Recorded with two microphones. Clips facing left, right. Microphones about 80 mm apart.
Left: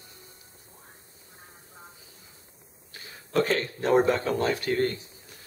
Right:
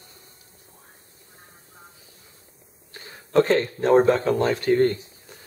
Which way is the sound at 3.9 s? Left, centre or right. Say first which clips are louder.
Right 5 dB; centre.